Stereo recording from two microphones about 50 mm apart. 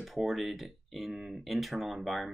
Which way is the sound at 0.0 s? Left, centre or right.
Centre.